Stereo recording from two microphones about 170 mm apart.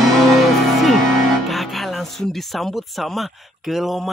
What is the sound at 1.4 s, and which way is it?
Speech, centre (ahead or behind).